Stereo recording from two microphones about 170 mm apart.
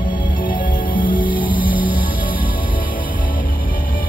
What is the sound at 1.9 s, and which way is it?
Music, 55° left (ahead or behind).